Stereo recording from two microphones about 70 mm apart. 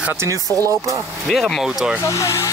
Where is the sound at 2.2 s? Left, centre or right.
Left.